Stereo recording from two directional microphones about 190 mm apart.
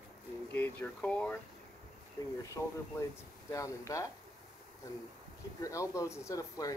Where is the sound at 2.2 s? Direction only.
20° left (ahead or behind).